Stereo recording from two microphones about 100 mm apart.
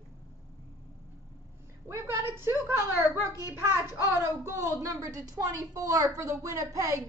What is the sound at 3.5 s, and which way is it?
A woman's voice, 25° right (ahead or behind).